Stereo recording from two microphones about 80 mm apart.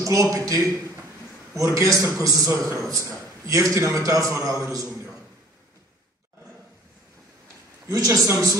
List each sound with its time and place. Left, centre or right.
0.0 s a man's voice: right
7.8 s a man's voice: right